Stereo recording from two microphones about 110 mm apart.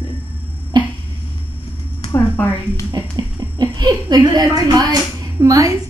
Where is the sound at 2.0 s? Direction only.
30° left (ahead or behind).